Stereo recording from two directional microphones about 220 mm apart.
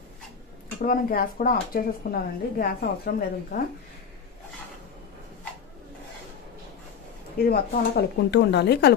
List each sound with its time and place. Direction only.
0.8 s speech: 40° left (ahead or behind)
7.4 s speech: 45° left (ahead or behind)